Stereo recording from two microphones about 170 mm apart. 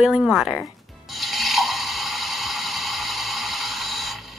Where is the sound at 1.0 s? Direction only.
Centre (ahead or behind).